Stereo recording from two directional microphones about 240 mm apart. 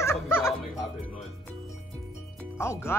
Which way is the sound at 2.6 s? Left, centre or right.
Centre.